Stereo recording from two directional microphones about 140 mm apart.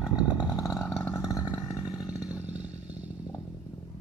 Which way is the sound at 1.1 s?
25° left (ahead or behind).